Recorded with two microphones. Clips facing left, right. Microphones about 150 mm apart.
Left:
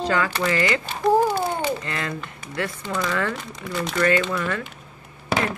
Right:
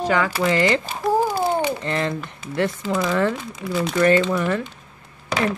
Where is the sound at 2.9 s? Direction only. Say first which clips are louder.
Right 3 dB; 5° right (ahead or behind).